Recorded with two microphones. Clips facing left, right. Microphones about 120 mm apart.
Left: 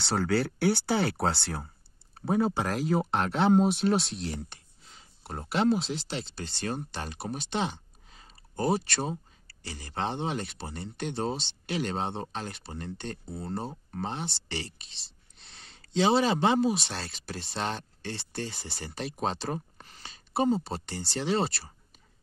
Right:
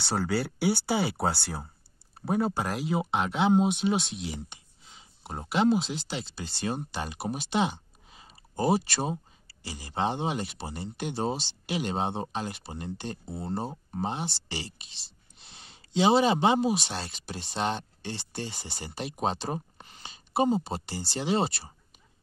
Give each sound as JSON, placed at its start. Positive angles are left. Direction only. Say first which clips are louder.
{"t": 0.0, "sound": "speech", "louder": "left 2 dB", "side_deg": -5}
{"t": 13.1, "sound": "speech", "louder": "right 2 dB", "side_deg": -25}
{"t": 13.9, "sound": "speech", "louder": "right 3 dB", "side_deg": -10}
{"t": 18.9, "sound": "speech", "louder": "right 1 dB", "side_deg": -5}